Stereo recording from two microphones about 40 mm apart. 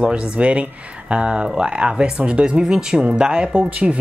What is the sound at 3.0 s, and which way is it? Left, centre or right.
Speech, right.